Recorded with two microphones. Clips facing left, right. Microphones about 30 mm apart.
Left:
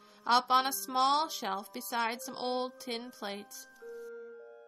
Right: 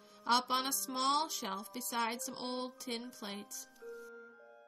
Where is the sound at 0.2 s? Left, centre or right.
Centre.